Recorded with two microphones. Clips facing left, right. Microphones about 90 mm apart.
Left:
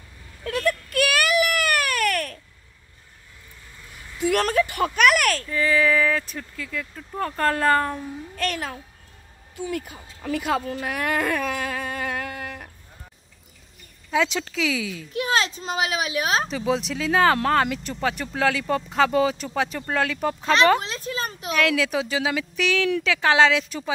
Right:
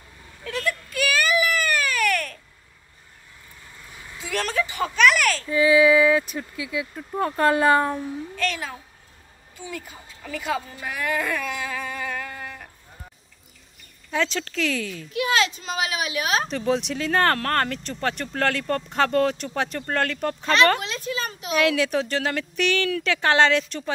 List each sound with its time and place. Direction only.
0.5 s a sound: 45° left (ahead or behind)
0.8 s baby cry: 65° left (ahead or behind)
4.2 s a child's voice: 50° left (ahead or behind)
5.5 s speech: 10° right (ahead or behind)
8.4 s a child's voice: 55° left (ahead or behind)
14.1 s speech: 10° left (ahead or behind)
15.1 s speech: 35° left (ahead or behind)
16.4 s speech: centre (ahead or behind)
20.8 s a sound: 35° left (ahead or behind)
21.5 s speech: centre (ahead or behind)